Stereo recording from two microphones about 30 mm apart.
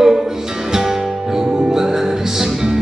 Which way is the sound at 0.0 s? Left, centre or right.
Centre.